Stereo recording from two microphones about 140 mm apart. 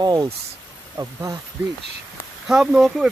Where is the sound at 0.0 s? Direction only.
30° right (ahead or behind).